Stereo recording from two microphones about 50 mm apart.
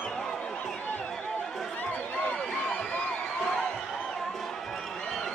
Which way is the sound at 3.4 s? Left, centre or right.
Centre.